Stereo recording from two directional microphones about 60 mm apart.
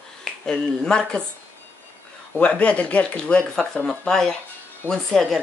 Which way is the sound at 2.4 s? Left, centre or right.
Centre.